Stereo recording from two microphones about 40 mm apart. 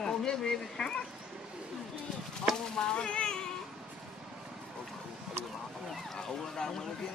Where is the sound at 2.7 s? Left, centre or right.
Centre.